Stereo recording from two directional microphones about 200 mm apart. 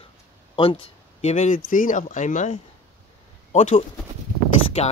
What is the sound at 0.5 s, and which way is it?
Speech, 25° left (ahead or behind).